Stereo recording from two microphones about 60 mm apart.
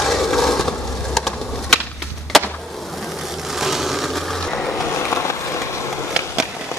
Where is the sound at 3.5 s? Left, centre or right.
Centre.